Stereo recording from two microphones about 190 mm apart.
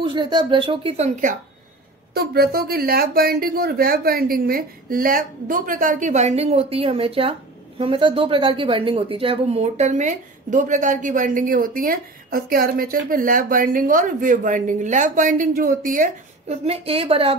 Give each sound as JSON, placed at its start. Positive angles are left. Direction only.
{"t": 0.0, "sound": "speech", "side_deg": -25}
{"t": 2.1, "sound": "a woman's voice", "side_deg": -55}